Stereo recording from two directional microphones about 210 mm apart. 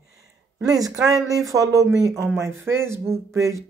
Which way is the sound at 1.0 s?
15° right (ahead or behind).